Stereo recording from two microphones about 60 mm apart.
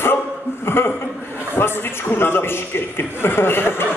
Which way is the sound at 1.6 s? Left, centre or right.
Left.